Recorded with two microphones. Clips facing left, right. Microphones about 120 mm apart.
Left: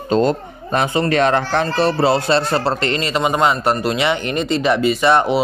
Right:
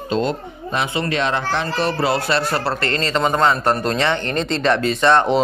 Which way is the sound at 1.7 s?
30° left (ahead or behind).